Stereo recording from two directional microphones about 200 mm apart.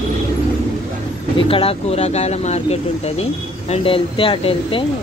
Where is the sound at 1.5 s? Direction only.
30° left (ahead or behind).